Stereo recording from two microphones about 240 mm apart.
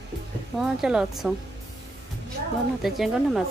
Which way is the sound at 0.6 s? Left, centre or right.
Centre.